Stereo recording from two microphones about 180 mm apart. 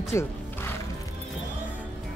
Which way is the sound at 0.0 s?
15° left (ahead or behind).